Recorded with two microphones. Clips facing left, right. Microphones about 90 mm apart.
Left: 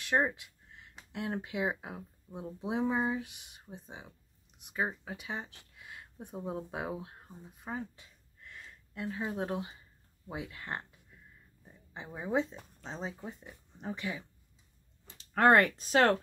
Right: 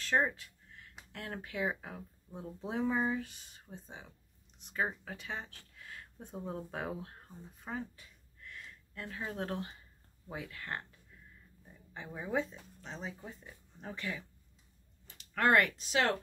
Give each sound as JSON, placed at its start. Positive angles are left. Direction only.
{"t": 0.0, "sound": "a sound", "side_deg": 15}
{"t": 1.1, "sound": "speech", "side_deg": 20}
{"t": 15.1, "sound": "speech", "side_deg": 30}